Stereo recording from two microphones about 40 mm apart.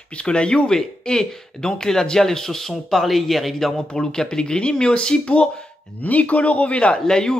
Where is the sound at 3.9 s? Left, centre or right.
Centre.